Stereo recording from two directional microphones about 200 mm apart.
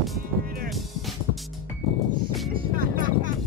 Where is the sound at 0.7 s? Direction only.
Centre (ahead or behind).